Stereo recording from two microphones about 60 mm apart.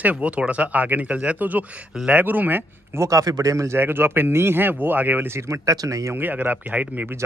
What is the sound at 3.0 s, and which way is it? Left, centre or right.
Speech, right.